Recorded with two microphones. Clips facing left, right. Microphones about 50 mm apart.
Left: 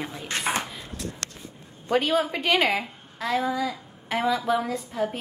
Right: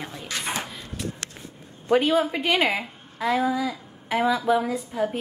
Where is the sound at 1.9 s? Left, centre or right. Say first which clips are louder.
Right 3 dB; centre.